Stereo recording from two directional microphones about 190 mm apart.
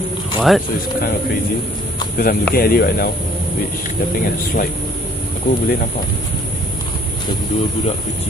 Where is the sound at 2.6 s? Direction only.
55° left (ahead or behind).